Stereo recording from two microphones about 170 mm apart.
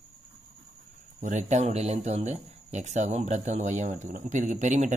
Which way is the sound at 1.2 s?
45° right (ahead or behind).